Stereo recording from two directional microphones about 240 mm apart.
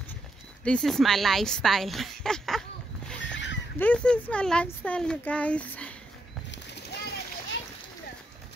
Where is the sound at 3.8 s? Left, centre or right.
Centre.